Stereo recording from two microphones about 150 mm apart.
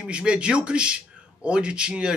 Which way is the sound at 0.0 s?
5° right (ahead or behind).